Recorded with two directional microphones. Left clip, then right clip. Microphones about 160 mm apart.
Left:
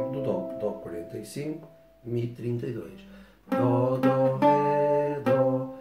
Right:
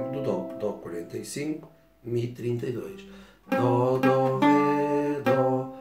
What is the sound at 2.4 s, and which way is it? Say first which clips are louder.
Music: right 3 dB; 5° right (ahead or behind).